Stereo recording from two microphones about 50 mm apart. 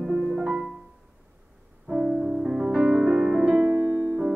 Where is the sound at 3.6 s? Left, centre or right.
Right.